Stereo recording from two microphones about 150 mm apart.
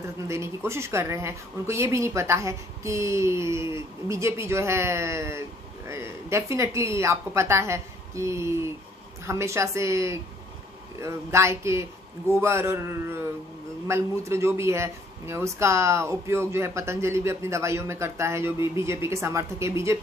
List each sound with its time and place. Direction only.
0.0 s speech: 20° right (ahead or behind)